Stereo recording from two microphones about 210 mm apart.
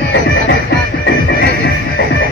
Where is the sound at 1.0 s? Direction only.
50° left (ahead or behind).